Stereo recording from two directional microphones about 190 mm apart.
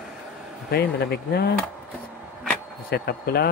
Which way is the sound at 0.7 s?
60° left (ahead or behind).